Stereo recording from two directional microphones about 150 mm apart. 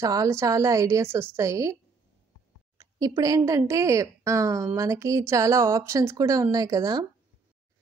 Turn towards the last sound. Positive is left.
turn(degrees=-25)  # may be behind; listen again after turning